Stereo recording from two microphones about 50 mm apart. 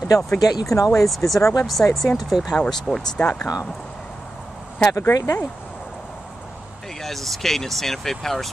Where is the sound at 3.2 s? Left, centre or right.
Left.